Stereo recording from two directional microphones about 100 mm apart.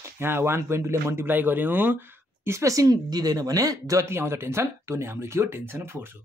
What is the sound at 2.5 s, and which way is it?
Speech, 30° right (ahead or behind).